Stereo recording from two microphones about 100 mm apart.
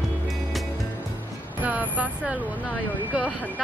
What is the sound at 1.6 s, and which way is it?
Vehicle, 15° right (ahead or behind).